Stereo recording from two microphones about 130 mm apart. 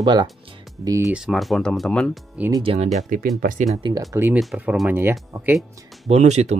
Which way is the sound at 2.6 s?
55° right (ahead or behind).